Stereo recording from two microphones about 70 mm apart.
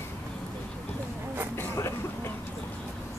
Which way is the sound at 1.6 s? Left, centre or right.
Left.